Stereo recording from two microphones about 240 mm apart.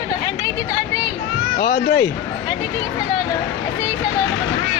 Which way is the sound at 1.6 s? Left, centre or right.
Left.